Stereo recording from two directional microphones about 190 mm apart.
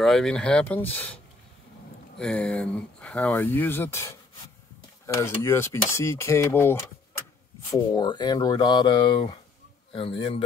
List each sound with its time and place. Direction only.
0.0 s speech: centre (ahead or behind)
7.7 s speech: 20° left (ahead or behind)